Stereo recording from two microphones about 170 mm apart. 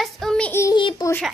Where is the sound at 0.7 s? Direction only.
25° left (ahead or behind).